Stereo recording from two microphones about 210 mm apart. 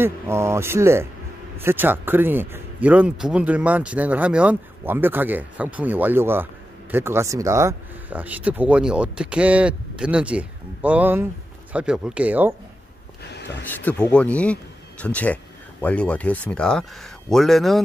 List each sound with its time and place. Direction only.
0.0 s speech: 10° right (ahead or behind)
13.2 s speech: 55° left (ahead or behind)
13.6 s speech: 10° left (ahead or behind)